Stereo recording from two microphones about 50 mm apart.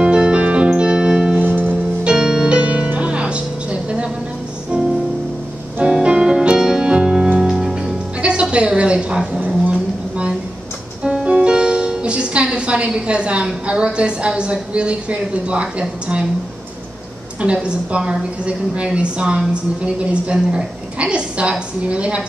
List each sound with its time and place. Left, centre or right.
0.0 s music: centre
1.4 s music: right
2.0 s music: centre
6.0 s music: centre
8.2 s a sound: right
11.1 s music: right
17.4 s a woman's voice: right